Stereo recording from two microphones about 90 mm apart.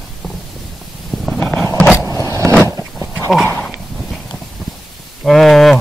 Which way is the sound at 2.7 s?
30° right (ahead or behind).